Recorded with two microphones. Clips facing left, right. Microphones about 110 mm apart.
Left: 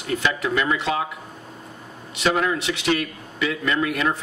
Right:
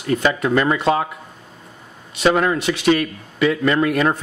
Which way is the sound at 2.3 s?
45° right (ahead or behind).